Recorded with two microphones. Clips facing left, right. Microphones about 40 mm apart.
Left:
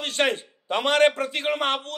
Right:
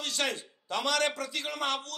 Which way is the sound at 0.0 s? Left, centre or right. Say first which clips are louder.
Left 8 dB; left.